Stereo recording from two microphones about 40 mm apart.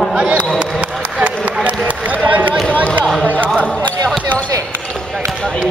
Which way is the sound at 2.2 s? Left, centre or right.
Right.